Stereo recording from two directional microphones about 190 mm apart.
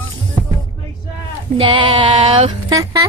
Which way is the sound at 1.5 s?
25° right (ahead or behind).